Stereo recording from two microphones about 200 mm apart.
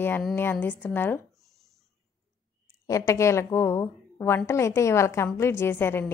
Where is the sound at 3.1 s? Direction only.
15° left (ahead or behind).